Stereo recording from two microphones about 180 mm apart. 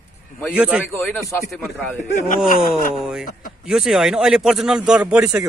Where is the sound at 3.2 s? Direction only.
50° left (ahead or behind).